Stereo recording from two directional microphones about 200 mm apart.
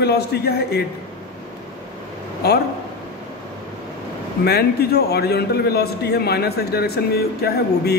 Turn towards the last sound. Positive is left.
turn(degrees=50)  # may be behind; listen again after turning